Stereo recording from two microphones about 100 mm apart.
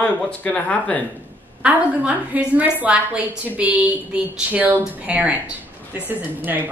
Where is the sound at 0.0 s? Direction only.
15° left (ahead or behind).